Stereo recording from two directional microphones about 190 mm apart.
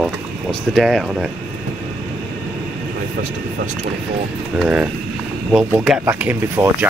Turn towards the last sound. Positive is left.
turn(degrees=-10)  # may be behind; listen again after turning